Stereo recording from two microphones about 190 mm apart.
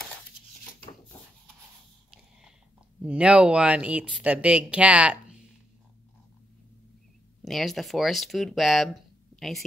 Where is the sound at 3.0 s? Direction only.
5° right (ahead or behind).